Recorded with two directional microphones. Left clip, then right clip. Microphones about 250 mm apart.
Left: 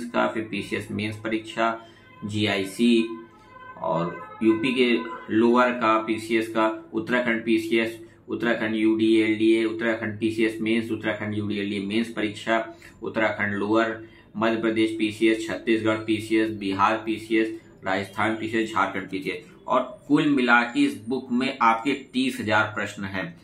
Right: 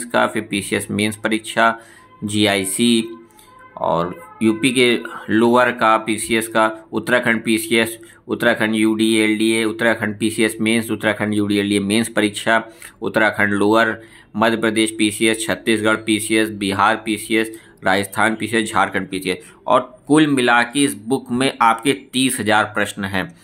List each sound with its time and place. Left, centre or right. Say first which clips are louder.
0.1 s speech: right 7 dB; right